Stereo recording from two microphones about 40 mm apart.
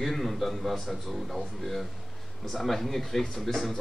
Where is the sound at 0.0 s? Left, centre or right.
Centre.